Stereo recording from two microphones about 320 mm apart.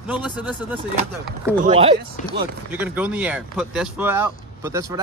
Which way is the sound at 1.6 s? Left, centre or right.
Centre.